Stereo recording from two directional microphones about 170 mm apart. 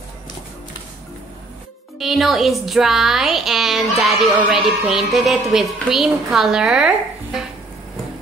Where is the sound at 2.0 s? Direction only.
Centre (ahead or behind).